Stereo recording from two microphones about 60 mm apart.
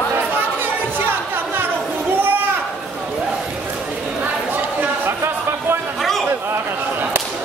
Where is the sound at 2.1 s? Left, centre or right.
Right.